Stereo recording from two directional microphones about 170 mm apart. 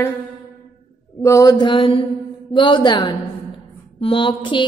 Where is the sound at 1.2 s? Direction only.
20° left (ahead or behind).